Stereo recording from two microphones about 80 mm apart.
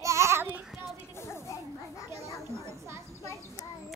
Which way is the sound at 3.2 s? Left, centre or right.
Left.